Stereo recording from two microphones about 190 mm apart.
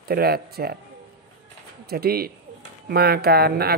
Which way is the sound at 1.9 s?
55° right (ahead or behind).